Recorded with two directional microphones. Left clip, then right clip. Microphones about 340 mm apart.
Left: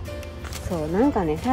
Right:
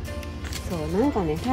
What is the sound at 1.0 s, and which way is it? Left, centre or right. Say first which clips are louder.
Speech: left 2 dB; centre.